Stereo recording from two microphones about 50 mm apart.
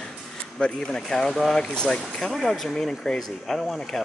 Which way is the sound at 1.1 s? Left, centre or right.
Centre.